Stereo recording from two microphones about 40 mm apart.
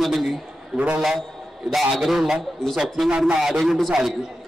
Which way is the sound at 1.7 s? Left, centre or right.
Centre.